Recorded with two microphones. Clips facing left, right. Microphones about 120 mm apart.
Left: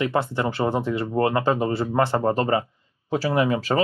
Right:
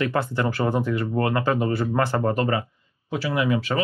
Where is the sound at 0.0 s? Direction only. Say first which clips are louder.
Left 1 dB; 20° left (ahead or behind).